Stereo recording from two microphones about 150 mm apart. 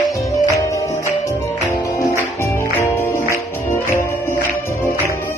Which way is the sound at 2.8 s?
15° left (ahead or behind).